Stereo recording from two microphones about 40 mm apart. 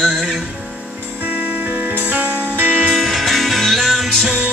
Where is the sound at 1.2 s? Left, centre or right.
Right.